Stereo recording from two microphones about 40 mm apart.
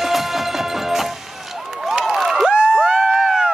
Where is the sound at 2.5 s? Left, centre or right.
Right.